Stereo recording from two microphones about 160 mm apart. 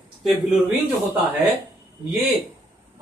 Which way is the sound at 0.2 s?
Centre (ahead or behind).